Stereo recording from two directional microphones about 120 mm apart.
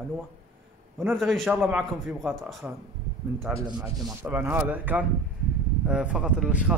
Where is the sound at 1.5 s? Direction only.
15° right (ahead or behind).